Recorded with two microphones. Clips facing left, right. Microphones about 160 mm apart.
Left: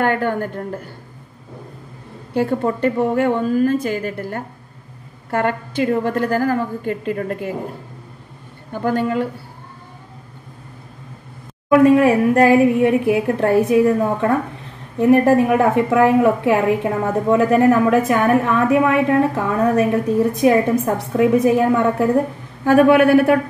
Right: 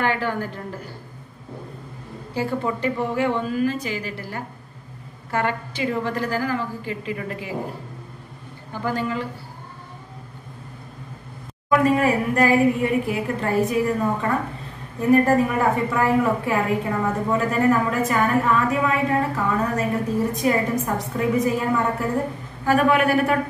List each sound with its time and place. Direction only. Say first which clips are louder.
0.0 s a woman's voice: left 5 dB; 55° left (ahead or behind)
2.3 s a woman's voice: left 6 dB; 55° left (ahead or behind)
8.8 s a woman's voice: left 6 dB; 55° left (ahead or behind)
11.8 s a woman's voice: left 8 dB; 65° left (ahead or behind)